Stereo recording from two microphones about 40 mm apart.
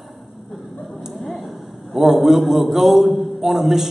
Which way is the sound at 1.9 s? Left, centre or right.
Centre.